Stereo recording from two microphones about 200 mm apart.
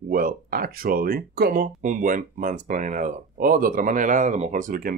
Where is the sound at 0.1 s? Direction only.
45° right (ahead or behind).